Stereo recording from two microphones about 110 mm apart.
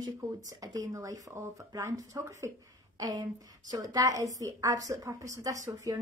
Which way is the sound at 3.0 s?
35° right (ahead or behind).